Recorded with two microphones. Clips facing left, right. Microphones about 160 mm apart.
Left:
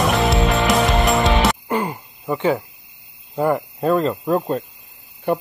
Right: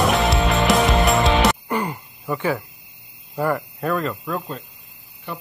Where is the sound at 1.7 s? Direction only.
20° left (ahead or behind).